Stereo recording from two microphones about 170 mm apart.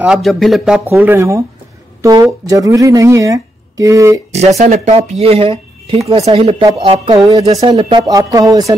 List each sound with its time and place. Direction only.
0.0 s speech: centre (ahead or behind)
2.0 s a sound: 20° right (ahead or behind)
2.4 s speech: 20° right (ahead or behind)
4.6 s speech: 40° right (ahead or behind); by 8.7 s 20° right (ahead or behind)